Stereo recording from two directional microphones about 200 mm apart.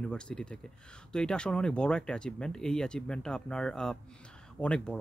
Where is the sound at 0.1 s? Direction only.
5° left (ahead or behind).